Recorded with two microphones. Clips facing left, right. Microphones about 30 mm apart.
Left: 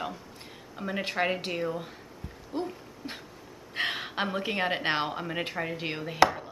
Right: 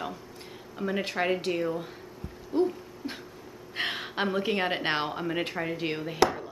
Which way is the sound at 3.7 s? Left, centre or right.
Centre.